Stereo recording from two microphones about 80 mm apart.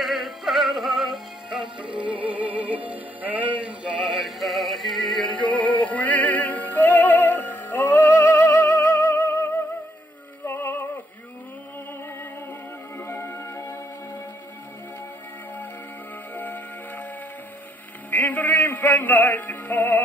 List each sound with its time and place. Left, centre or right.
0.0 s synthetic singing: centre
1.6 s music: right
2.1 s music: centre
4.1 s synthetic singing: centre
5.2 s music: centre
10.4 s synthetic singing: left
13.0 s music: left
16.3 s music: left
18.1 s music: left